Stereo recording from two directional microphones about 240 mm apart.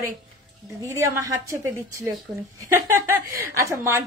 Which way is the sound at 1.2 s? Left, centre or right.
Centre.